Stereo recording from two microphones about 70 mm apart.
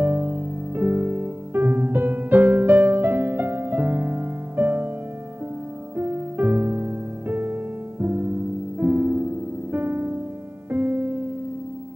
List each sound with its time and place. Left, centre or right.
0.0 s music: right
5.9 s music: right